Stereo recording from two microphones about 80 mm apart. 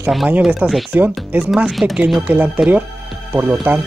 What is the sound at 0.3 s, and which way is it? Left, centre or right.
Speech, centre.